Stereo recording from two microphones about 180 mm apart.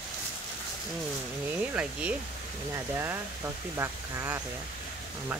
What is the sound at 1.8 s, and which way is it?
Speech, 5° right (ahead or behind).